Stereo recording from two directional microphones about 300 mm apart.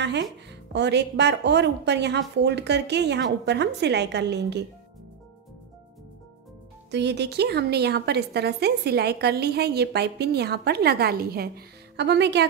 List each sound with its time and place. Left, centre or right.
0.0 s a woman's voice: right
6.9 s a woman's voice: right